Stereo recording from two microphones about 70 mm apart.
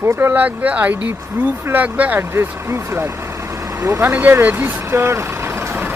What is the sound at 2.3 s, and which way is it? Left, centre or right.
Speech, right.